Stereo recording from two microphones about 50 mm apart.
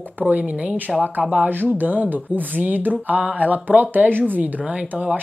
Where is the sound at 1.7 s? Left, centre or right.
Right.